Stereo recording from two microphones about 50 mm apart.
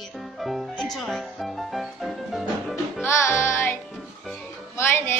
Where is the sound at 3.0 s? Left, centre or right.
Left.